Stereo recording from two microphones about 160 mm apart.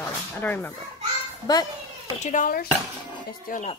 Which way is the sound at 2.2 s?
55° left (ahead or behind).